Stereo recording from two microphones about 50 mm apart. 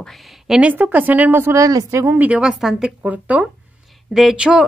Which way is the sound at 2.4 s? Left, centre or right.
Centre.